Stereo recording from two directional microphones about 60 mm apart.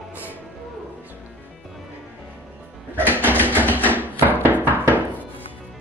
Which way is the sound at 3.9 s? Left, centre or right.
Right.